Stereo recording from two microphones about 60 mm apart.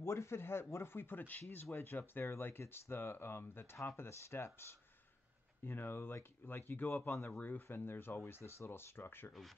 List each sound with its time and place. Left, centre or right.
0.0 s speech: left
5.7 s speech: left